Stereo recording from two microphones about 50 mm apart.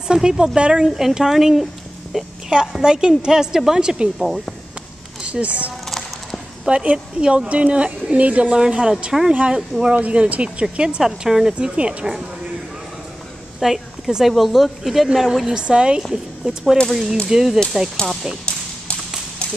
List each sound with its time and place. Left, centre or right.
0.1 s a woman's voice: centre
4.2 s a woman's voice: centre
5.3 s a woman's voice: right
5.9 s music: centre
6.7 s a woman's voice: right
11.1 s a woman's voice: centre
11.6 s a woman's voice: right
13.6 s a woman's voice: centre
15.4 s a woman's voice: centre
16.0 s a woman's voice: centre
17.3 s a woman's voice: centre
18.4 s a sound: centre